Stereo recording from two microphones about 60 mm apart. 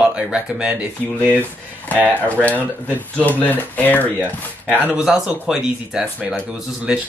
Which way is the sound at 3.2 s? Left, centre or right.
Left.